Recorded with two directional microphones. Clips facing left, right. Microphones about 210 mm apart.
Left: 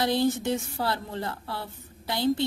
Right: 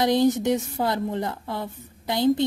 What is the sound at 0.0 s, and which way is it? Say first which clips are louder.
A woman's voice: right 5 dB; 20° right (ahead or behind).